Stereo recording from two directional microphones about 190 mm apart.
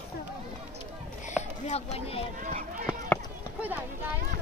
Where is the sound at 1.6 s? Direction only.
35° left (ahead or behind).